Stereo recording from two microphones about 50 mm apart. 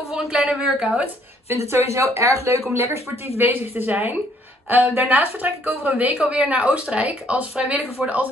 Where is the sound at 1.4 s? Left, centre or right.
Right.